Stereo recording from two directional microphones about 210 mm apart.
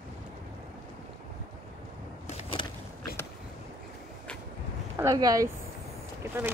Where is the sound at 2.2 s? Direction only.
30° left (ahead or behind).